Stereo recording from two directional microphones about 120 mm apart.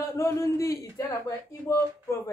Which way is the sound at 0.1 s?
20° left (ahead or behind).